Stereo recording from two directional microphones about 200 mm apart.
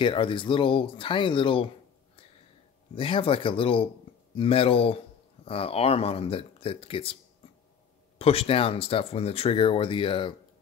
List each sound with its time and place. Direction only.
0.0 s speech: 25° left (ahead or behind)
3.0 s speech: 25° left (ahead or behind)
8.2 s speech: 30° left (ahead or behind)